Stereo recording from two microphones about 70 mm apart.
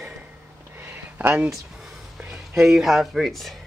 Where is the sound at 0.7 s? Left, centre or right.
Right.